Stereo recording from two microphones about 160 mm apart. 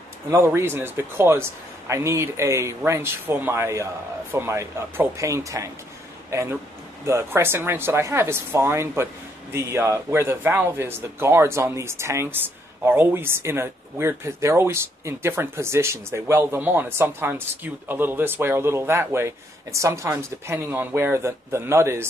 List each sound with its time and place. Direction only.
0.3 s speech: 15° right (ahead or behind)